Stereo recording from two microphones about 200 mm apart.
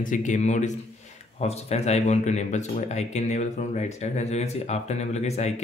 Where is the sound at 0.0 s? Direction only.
40° left (ahead or behind).